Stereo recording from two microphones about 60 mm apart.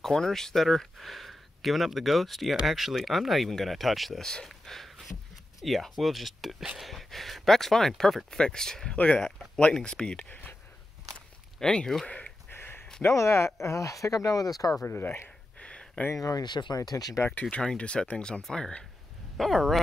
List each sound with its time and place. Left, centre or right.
0.0 s speech: centre
4.2 s speech: centre
8.9 s speech: left
11.6 s speech: centre
12.4 s a sound: left
13.1 s speech: left
14.9 s speech: left
15.2 s a sound: centre
16.2 s speech: left
17.3 s speech: left
19.3 s speech: centre